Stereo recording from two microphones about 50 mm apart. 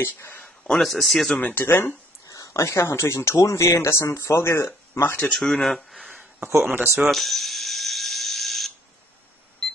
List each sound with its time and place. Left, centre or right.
0.2 s speech: left
0.7 s a man's voice: centre
1.6 s speech: left
2.2 s speech: left
5.3 s speech: centre
6.6 s speech: right
7.1 s a sound: centre